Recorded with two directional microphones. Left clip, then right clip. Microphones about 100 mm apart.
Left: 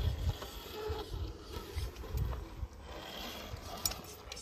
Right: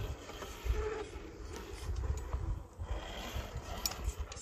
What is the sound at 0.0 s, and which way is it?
Vehicle, 20° left (ahead or behind).